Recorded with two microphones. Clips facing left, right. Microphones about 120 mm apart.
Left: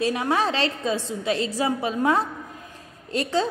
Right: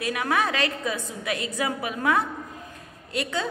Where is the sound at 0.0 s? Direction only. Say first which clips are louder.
Left 3 dB; 30° left (ahead or behind).